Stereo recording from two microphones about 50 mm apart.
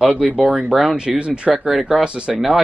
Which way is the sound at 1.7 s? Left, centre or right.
Centre.